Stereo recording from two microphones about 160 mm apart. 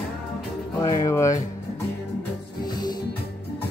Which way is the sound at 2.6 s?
25° left (ahead or behind).